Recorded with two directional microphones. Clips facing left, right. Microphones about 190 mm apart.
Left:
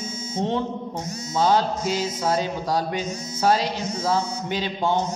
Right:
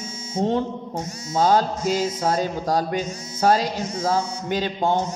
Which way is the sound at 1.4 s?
45° right (ahead or behind).